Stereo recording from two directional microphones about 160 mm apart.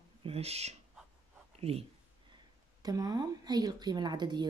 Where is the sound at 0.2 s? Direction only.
40° right (ahead or behind).